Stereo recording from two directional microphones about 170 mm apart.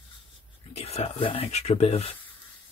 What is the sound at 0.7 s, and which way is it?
Speech, 35° left (ahead or behind).